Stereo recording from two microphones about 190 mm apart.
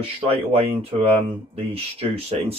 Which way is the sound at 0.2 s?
30° right (ahead or behind).